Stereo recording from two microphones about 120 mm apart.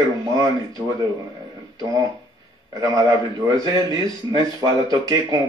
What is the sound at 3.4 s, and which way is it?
Speech, 30° right (ahead or behind).